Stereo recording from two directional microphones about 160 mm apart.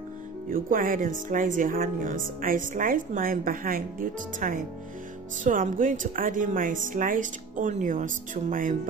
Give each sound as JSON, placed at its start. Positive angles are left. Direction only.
{"t": 0.5, "sound": "speech", "side_deg": -60}